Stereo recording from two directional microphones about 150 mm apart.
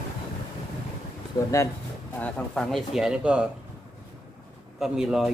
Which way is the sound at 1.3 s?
30° left (ahead or behind).